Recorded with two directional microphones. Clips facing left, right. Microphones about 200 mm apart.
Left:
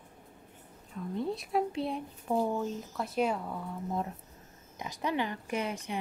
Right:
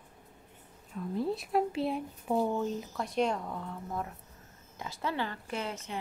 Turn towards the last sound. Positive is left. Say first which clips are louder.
# left 3 dB
turn(degrees=15)  # may be behind; listen again after turning